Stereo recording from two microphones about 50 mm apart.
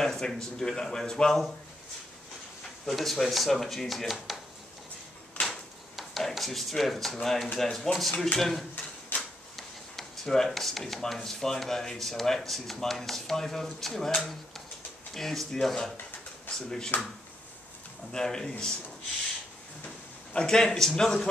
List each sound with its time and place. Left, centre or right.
0.0 s speech: centre
2.9 s speech: centre
5.4 s a sound: left
5.9 s speech: centre
9.1 s a sound: left
9.6 s speech: centre
18.1 s speech: centre
20.3 s speech: centre